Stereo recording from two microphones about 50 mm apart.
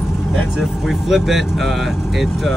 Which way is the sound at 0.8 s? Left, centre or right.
Centre.